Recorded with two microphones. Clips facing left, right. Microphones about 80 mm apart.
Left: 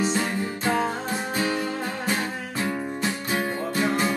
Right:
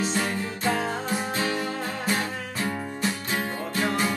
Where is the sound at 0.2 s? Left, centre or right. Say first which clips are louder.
Left 1 dB; left.